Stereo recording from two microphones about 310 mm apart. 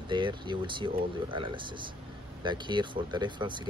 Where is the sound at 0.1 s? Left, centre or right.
Centre.